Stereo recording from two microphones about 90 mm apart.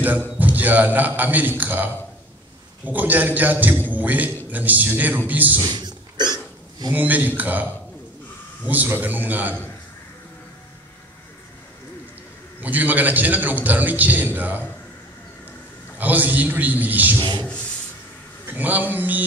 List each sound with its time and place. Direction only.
0.4 s a man's voice: 20° right (ahead or behind)
5.6 s a sound: 50° right (ahead or behind)
6.9 s a man's voice: 20° right (ahead or behind)
12.5 s a man's voice: 20° right (ahead or behind)
16.0 s a man's voice: 20° right (ahead or behind)
18.5 s a man's voice: 20° right (ahead or behind)